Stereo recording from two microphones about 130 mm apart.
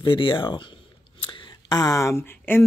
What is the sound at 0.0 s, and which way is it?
Speech, 40° left (ahead or behind).